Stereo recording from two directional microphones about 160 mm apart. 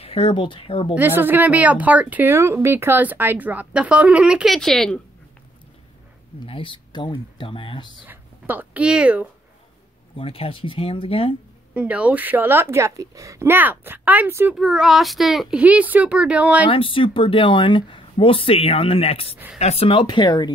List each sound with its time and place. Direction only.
0.0 s speech: 35° left (ahead or behind)
0.9 s a woman's voice: 10° right (ahead or behind)
6.4 s speech: 35° left (ahead or behind)
8.1 s speech: 10° right (ahead or behind)
10.1 s speech: 35° left (ahead or behind)
11.7 s a woman's voice: 10° right (ahead or behind)
14.5 s a child's voice: centre (ahead or behind)
16.6 s speech: 35° left (ahead or behind)
19.3 s a woman's voice: 10° right (ahead or behind)
19.6 s speech: 40° left (ahead or behind)